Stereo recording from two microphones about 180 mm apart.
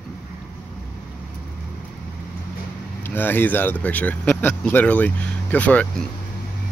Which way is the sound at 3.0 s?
10° left (ahead or behind).